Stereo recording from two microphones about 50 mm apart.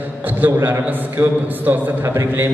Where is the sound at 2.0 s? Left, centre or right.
Right.